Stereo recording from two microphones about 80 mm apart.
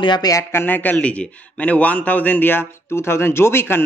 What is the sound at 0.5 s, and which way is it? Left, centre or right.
A man's voice, left.